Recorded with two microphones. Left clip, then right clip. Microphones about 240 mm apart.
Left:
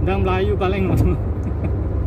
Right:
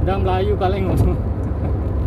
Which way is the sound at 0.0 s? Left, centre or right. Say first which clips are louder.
Even; centre.